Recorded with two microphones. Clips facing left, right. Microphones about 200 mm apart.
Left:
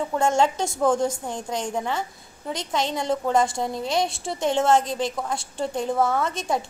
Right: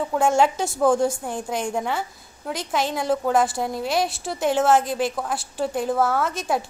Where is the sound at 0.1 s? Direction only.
5° right (ahead or behind).